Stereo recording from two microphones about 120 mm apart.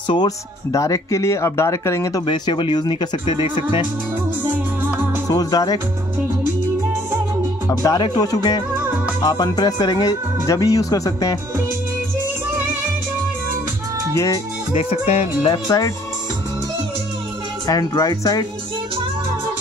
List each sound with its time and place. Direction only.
0.1 s speech: 40° left (ahead or behind)
0.7 s speech: 25° left (ahead or behind)
2.2 s speech: 40° left (ahead or behind)
5.3 s speech: 35° left (ahead or behind)
7.8 s speech: 30° left (ahead or behind)
14.1 s speech: 25° left (ahead or behind)
14.7 s music: 55° left (ahead or behind)
15.5 s speech: 35° left (ahead or behind)
17.6 s speech: 30° left (ahead or behind)